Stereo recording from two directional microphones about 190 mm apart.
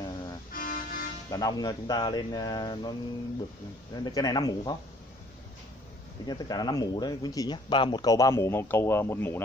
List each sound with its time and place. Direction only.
0.5 s toot: 45° left (ahead or behind)
1.3 s speech: 20° left (ahead or behind)
6.2 s speech: 20° left (ahead or behind)